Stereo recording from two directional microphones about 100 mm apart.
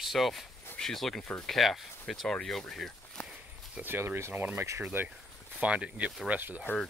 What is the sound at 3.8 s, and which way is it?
Speech, 20° right (ahead or behind).